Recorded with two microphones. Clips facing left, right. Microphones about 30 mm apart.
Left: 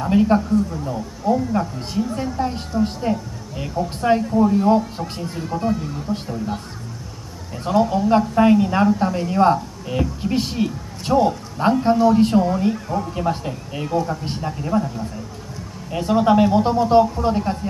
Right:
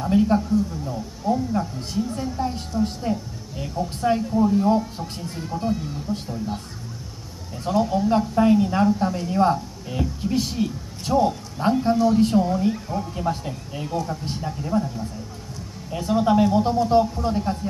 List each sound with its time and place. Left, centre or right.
0.0 s speech: left
7.5 s speech: centre
8.4 s speech: left